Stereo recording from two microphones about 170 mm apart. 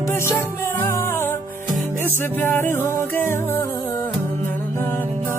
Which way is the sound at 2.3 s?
15° left (ahead or behind).